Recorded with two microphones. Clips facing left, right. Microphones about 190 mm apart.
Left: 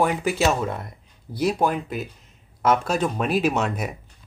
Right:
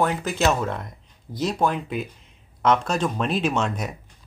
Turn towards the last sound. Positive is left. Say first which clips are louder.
# left 1 dB
turn(degrees=5)  # may be behind; listen again after turning